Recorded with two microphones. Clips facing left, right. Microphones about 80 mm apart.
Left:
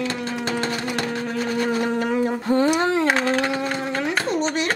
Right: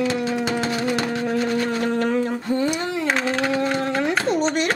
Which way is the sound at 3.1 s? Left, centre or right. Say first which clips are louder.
Left 1 dB; centre.